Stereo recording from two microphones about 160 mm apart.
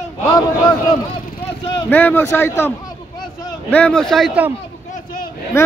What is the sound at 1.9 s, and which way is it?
A man's voice, 10° left (ahead or behind).